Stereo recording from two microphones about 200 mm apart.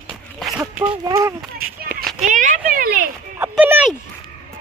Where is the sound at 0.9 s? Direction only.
15° right (ahead or behind).